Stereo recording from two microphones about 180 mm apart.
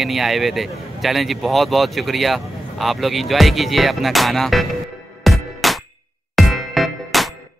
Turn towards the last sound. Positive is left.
turn(degrees=0)  # may be behind; listen again after turning